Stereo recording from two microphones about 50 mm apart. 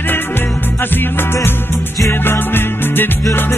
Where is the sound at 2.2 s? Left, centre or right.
Left.